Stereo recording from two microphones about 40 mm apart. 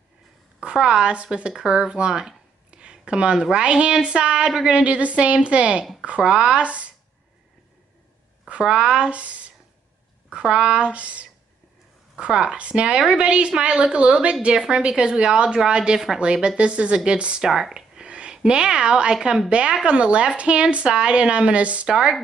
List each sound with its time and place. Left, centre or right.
0.6 s a woman's voice: right
8.5 s a woman's voice: right
12.2 s a woman's voice: right
17.4 s a woman's voice: centre; by 21.8 s right
21.8 s a woman's voice: centre